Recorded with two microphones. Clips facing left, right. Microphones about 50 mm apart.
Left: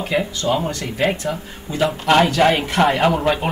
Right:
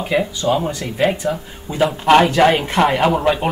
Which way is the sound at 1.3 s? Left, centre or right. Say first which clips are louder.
Right 1 dB; right.